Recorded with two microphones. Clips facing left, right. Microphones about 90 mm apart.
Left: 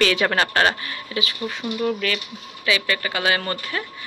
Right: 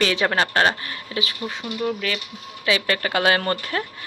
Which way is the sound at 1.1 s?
35° right (ahead or behind).